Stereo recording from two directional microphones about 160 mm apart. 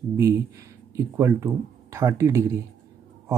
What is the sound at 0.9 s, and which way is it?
Speech, 15° right (ahead or behind).